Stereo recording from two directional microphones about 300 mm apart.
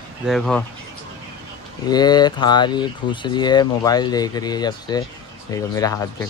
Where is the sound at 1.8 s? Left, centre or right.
Centre.